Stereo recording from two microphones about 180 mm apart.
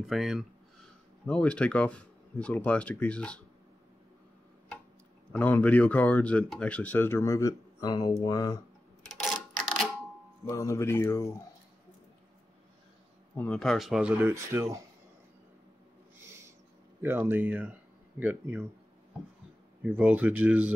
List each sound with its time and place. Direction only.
0.1 s speech: centre (ahead or behind)
5.3 s speech: 10° left (ahead or behind)
9.0 s a sound: centre (ahead or behind)
10.5 s speech: 15° left (ahead or behind)
13.4 s speech: 5° left (ahead or behind)
14.2 s speech: 15° right (ahead or behind)
17.0 s speech: 10° right (ahead or behind)
19.8 s speech: 10° right (ahead or behind)